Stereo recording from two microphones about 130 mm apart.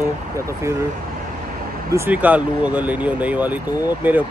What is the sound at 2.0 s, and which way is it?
Speech, 10° right (ahead or behind).